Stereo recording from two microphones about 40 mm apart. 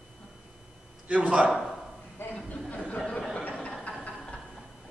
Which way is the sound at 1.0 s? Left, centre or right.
Right.